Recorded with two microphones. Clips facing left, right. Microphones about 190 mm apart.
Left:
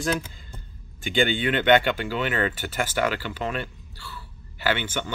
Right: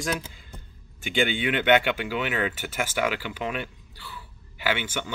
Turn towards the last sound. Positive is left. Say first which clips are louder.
# left 2 dB
turn(degrees=-10)  # may be behind; listen again after turning